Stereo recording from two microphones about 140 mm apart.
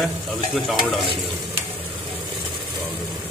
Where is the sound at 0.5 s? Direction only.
Centre (ahead or behind).